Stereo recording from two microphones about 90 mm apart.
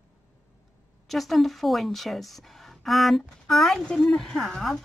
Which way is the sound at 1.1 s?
Centre (ahead or behind).